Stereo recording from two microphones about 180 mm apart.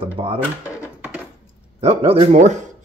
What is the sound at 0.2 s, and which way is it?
Speech, 30° right (ahead or behind).